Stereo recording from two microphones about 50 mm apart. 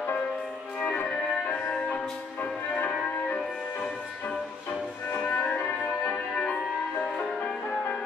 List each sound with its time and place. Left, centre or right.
1.1 s music: centre
5.1 s music: left